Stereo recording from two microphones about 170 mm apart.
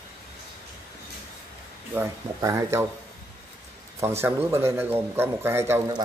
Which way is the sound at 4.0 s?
15° right (ahead or behind).